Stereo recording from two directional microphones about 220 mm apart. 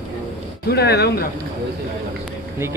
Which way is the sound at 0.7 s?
50° left (ahead or behind).